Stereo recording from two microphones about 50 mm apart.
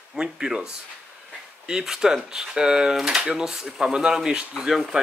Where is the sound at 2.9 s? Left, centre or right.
Centre.